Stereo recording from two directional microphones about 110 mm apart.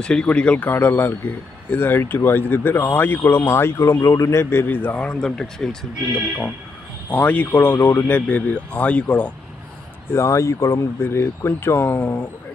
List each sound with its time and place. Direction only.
0.0 s speech: 10° left (ahead or behind)
10.1 s speech: 25° left (ahead or behind)